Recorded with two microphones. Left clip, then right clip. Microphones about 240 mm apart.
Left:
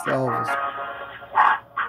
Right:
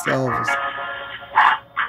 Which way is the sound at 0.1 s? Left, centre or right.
Centre.